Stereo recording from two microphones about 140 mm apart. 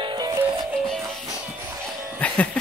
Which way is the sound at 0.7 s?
5° right (ahead or behind).